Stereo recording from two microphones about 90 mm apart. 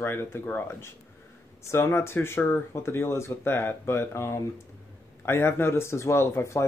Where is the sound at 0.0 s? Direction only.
25° left (ahead or behind).